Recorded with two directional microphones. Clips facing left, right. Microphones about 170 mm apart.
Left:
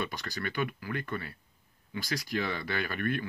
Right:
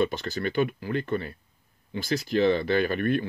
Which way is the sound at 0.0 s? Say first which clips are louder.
Right 9 dB; 25° right (ahead or behind).